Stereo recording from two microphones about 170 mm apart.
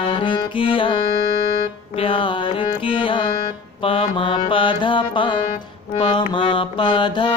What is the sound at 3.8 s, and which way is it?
Mantra, 30° left (ahead or behind).